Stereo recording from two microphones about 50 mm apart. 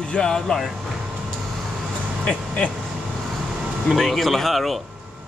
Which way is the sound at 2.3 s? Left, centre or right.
Left.